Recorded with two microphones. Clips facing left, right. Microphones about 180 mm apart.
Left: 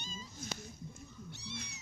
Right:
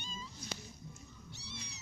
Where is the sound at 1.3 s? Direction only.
55° left (ahead or behind).